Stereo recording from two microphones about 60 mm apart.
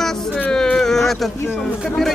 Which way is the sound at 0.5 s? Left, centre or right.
Centre.